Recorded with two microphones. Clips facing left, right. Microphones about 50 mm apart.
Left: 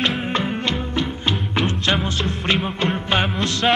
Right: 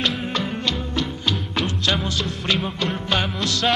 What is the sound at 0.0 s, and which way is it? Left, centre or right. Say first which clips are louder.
Music: left 2 dB; left.